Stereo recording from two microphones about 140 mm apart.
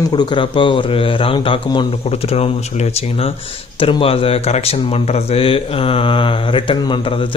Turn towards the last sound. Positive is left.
turn(degrees=40)  # may be behind; listen again after turning